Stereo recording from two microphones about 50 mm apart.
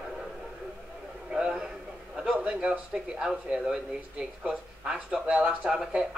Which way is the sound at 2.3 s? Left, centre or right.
Right.